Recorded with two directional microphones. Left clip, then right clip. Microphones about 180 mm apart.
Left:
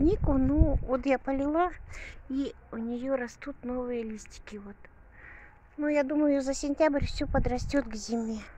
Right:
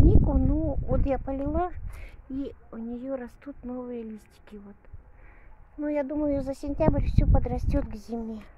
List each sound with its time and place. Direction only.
0.3 s a woman's voice: centre (ahead or behind)